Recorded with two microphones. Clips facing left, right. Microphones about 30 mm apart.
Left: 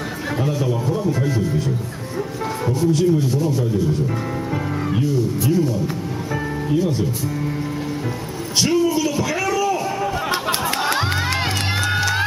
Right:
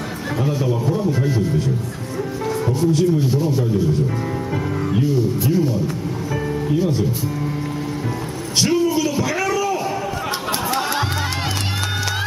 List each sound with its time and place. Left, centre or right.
0.4 s a man's voice: centre
2.8 s speech: centre
5.0 s speech: centre
8.5 s a sound: centre